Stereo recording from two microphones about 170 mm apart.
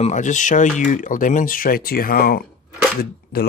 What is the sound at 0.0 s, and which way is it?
Speech, 45° left (ahead or behind).